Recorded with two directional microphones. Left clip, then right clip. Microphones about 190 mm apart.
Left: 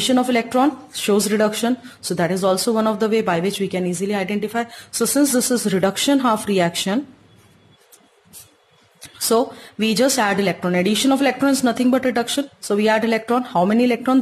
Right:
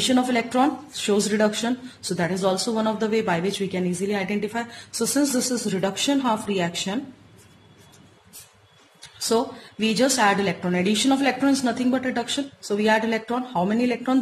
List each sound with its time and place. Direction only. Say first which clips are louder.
0.0 s speech: left 4 dB; 25° left (ahead or behind)
9.3 s speech: left 5 dB; 35° left (ahead or behind)